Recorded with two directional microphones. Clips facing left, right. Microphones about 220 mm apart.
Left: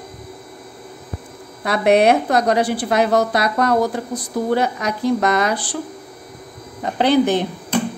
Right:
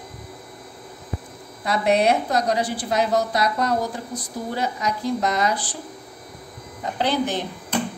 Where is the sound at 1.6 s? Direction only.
65° left (ahead or behind).